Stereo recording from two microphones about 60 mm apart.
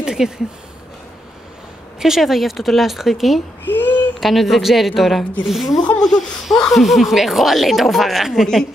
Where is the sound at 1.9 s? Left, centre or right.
Centre.